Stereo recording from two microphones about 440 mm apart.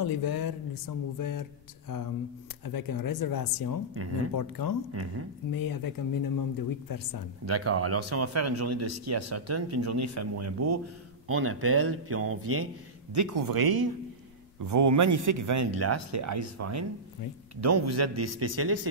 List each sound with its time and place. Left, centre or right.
0.0 s speech: left
2.6 s speech: left
5.0 s speech: right
5.5 s speech: left
7.4 s speech: right
13.1 s speech: right
14.6 s speech: right